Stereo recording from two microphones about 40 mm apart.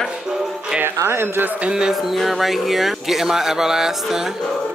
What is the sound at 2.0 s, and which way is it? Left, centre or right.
Speech, centre.